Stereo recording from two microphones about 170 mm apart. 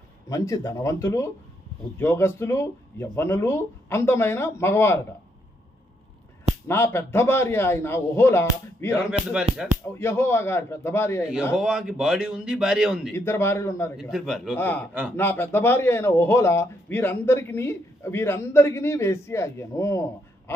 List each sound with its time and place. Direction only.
0.3 s a man's voice: 20° left (ahead or behind)
6.7 s a man's voice: 15° left (ahead or behind)
9.5 s speech: 40° right (ahead or behind)
9.9 s a man's voice: 15° left (ahead or behind)
11.5 s a man's voice: 5° right (ahead or behind)
13.1 s a man's voice: 15° left (ahead or behind)
14.1 s a man's voice: centre (ahead or behind)
14.6 s a man's voice: 10° left (ahead or behind)